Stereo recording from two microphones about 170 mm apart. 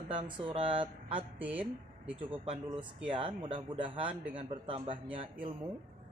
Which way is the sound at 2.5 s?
30° right (ahead or behind).